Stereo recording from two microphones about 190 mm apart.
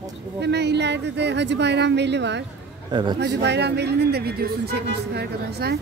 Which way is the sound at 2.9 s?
25° right (ahead or behind).